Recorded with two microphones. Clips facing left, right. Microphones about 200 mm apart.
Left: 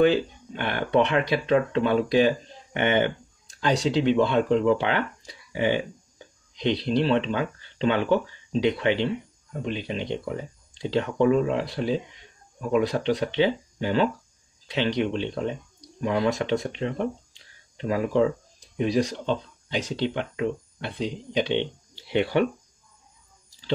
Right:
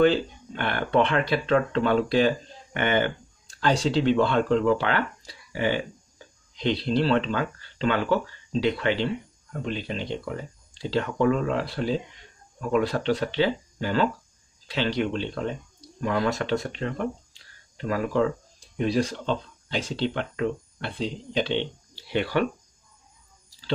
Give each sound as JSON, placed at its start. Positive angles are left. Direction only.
{"t": 0.0, "sound": "speech", "side_deg": 15}